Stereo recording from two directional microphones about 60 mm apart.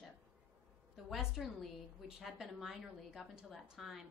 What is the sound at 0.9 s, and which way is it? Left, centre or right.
A woman's voice, centre.